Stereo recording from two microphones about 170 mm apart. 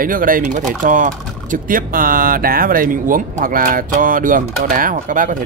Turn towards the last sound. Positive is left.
turn(degrees=-50)  # may be behind; listen again after turning